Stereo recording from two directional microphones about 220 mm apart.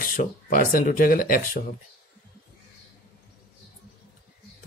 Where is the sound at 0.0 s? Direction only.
35° left (ahead or behind).